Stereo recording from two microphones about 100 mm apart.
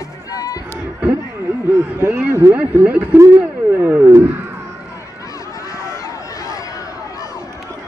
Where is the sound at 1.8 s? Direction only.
20° right (ahead or behind).